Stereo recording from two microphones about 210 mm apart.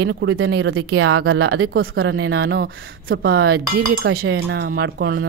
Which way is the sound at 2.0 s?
65° right (ahead or behind).